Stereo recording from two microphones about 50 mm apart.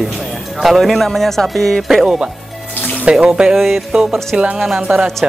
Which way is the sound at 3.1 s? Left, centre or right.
Centre.